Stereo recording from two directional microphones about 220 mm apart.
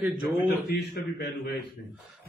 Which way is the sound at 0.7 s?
45° left (ahead or behind).